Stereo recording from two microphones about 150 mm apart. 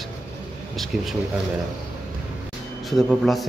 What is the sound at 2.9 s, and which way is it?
Speech, centre (ahead or behind).